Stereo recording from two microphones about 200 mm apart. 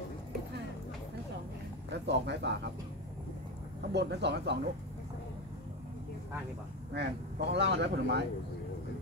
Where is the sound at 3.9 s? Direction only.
55° right (ahead or behind).